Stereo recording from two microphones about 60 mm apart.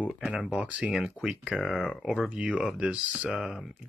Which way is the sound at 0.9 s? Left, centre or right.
Centre.